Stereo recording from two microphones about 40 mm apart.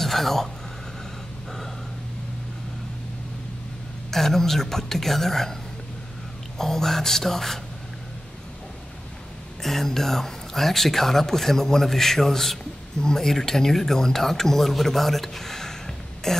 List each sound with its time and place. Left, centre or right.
0.0 s a sound: centre
4.1 s speech: centre
6.6 s speech: centre
9.6 s speech: centre